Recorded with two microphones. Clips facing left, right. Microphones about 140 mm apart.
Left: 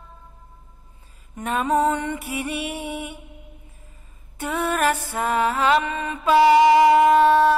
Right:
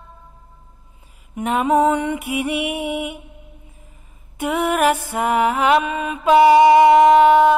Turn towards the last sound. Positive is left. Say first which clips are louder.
# right 4 dB
turn(degrees=-15)  # may be behind; listen again after turning